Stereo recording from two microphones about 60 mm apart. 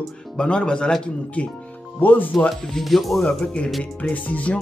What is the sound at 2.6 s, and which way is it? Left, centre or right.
Speech, centre.